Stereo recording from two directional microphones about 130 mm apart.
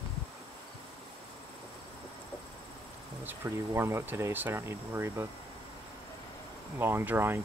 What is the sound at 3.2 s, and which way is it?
Speech, 20° right (ahead or behind).